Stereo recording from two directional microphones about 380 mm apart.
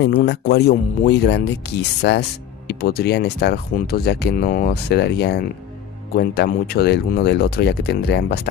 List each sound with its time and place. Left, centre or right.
0.0 s speech: left